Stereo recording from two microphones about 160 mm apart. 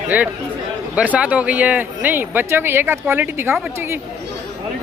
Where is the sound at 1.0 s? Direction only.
10° right (ahead or behind).